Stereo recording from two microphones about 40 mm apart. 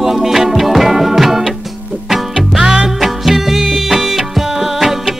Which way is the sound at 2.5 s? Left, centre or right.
Centre.